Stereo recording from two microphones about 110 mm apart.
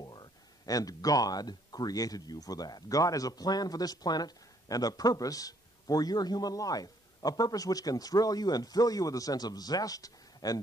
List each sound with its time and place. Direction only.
0.0 s speech: 40° left (ahead or behind)